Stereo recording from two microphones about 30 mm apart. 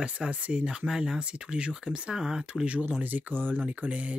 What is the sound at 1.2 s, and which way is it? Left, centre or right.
Speech, right.